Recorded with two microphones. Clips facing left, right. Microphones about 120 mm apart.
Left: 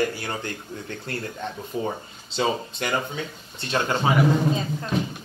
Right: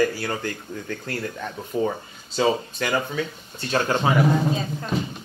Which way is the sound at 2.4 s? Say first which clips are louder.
Right 3 dB; 25° left (ahead or behind).